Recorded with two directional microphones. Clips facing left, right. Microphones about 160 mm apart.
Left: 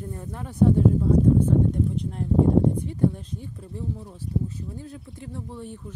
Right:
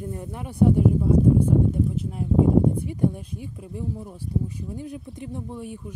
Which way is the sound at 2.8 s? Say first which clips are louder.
Even; 10° right (ahead or behind).